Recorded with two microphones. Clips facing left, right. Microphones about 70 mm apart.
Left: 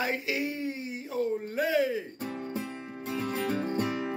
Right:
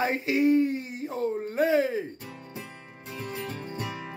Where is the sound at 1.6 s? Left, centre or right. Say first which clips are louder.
Right 4 dB; right.